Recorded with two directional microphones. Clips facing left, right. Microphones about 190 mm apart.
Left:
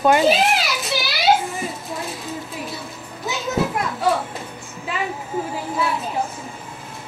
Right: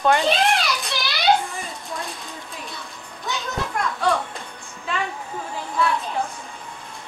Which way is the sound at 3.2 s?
5° left (ahead or behind).